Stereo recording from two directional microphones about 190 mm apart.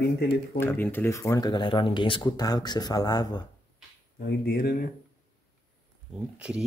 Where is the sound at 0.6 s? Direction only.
10° left (ahead or behind).